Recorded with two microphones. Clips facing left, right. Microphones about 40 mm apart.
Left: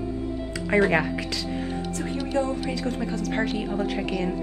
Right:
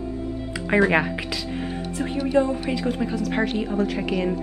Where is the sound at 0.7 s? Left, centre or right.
Right.